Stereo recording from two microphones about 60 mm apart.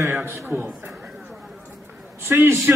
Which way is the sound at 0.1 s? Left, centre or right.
Right.